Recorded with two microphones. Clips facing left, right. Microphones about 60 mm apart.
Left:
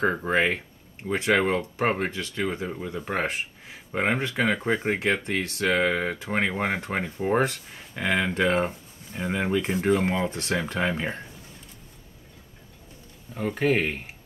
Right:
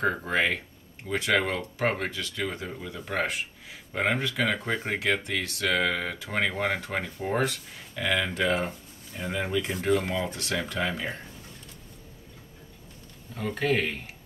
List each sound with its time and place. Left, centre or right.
0.0 s speech: left
13.3 s speech: centre